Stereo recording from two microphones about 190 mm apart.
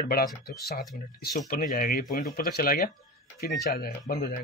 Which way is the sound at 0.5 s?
55° left (ahead or behind).